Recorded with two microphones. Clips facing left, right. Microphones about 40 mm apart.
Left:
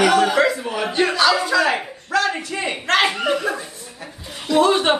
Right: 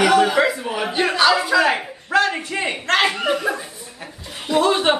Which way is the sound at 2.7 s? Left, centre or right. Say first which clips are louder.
Left 1 dB; centre.